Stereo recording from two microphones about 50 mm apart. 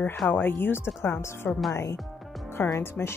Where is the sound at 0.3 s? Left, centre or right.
Left.